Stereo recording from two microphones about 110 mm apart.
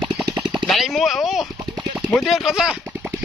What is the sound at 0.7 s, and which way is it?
Speech, centre (ahead or behind).